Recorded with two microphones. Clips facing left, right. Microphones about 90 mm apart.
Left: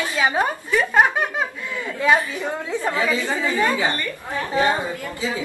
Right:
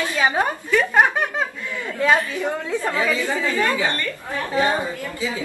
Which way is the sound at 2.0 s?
20° left (ahead or behind).